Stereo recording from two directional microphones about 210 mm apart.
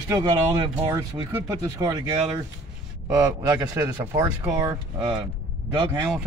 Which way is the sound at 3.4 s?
15° right (ahead or behind).